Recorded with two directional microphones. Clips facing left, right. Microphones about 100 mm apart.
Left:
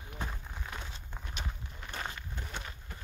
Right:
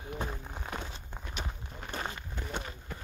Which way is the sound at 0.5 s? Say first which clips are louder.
Right 4 dB; 40° right (ahead or behind).